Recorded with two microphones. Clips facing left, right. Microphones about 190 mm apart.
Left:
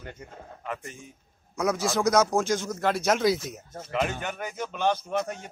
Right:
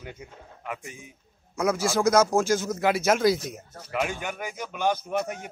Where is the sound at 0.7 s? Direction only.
10° right (ahead or behind).